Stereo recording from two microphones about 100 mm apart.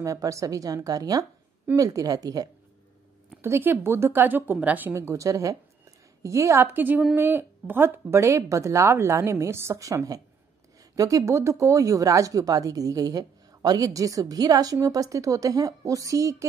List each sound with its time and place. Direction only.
0.0 s speech: 35° right (ahead or behind)
3.4 s speech: 25° right (ahead or behind)